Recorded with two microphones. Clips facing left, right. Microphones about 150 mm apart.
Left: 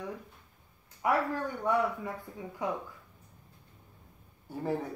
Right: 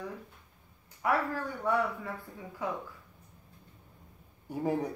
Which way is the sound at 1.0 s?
20° left (ahead or behind).